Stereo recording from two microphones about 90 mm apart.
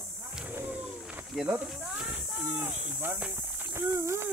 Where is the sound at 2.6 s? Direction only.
20° right (ahead or behind).